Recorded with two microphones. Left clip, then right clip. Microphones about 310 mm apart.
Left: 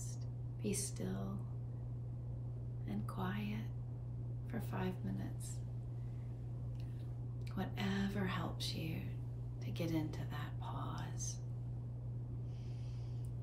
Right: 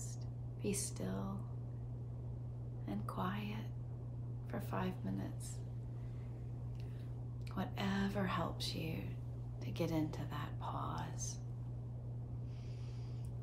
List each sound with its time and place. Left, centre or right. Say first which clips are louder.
0.6 s speech: right 1 dB; centre
2.9 s speech: right 2 dB; centre
7.5 s speech: right 1 dB; centre